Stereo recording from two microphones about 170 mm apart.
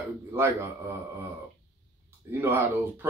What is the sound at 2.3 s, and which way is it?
Speech, 15° right (ahead or behind).